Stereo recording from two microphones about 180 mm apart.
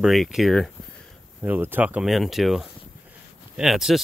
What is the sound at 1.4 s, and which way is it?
Speech, 10° right (ahead or behind).